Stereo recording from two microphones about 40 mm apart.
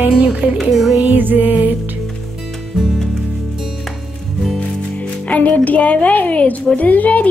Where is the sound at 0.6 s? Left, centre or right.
Centre.